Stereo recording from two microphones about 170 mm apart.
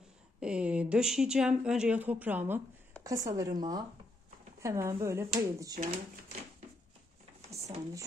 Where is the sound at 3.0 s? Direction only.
20° right (ahead or behind).